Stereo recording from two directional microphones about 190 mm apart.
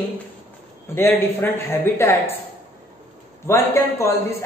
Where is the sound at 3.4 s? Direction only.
15° left (ahead or behind).